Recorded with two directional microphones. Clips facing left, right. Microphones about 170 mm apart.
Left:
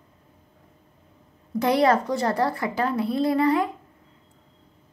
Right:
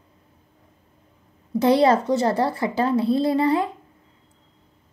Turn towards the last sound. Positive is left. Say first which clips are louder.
# right 1 dB
turn(degrees=-30)  # may be behind; listen again after turning